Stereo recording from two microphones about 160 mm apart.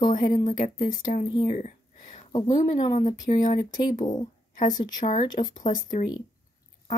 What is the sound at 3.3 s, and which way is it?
Speech, 55° left (ahead or behind).